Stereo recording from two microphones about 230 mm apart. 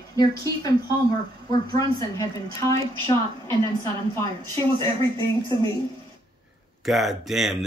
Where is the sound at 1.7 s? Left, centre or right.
Centre.